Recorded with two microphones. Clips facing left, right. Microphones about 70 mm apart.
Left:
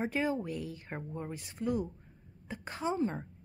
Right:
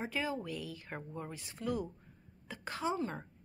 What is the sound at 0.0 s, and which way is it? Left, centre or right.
Speech, left.